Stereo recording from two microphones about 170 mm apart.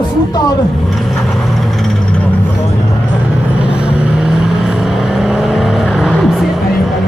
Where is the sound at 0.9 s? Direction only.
Centre (ahead or behind).